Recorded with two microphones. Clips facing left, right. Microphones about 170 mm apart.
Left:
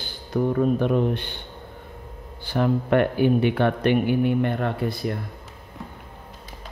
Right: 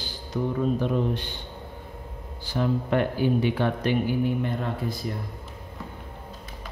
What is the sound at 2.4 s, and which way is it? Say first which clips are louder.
Speech: left 3 dB; 60° left (ahead or behind).